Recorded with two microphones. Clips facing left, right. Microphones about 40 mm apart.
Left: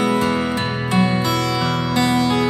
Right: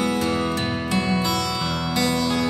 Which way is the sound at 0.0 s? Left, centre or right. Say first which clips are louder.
Left 4 dB; left.